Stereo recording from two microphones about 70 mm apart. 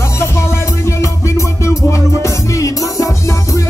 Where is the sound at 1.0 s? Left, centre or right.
Left.